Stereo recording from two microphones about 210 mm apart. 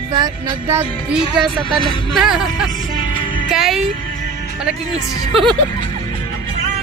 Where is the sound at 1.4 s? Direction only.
Centre (ahead or behind).